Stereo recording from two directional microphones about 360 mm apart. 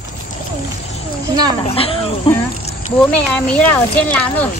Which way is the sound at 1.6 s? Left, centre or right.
Centre.